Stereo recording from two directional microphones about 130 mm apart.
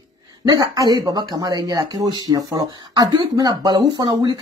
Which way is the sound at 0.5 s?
30° right (ahead or behind).